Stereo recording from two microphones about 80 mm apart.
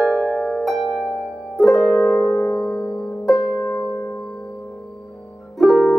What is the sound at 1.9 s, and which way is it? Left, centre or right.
Music, centre.